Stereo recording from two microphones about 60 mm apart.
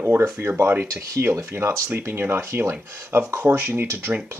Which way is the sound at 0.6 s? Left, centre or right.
Right.